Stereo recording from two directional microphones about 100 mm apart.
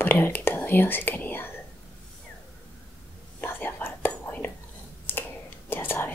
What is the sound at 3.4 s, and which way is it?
Whispering, 20° left (ahead or behind).